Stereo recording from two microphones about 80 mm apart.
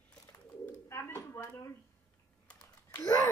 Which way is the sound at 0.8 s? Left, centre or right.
Left.